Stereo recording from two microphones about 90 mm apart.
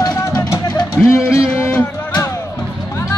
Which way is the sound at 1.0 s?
15° left (ahead or behind).